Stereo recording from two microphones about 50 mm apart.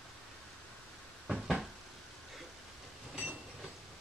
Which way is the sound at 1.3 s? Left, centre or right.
Centre.